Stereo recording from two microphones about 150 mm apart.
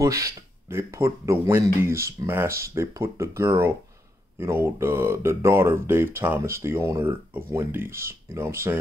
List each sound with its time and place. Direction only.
0.0 s speech: 20° right (ahead or behind)